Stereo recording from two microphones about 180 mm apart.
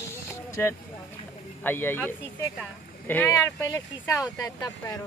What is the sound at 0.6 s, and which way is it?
Speech, 10° left (ahead or behind).